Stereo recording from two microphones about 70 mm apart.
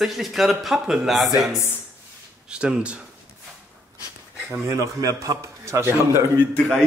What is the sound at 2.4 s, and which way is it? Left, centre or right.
Speech, centre.